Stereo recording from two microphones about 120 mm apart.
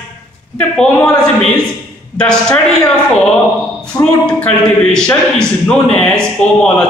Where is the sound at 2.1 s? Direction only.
5° left (ahead or behind).